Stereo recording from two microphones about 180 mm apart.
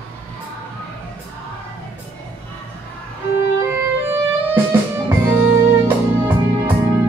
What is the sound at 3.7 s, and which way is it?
Music, 10° right (ahead or behind).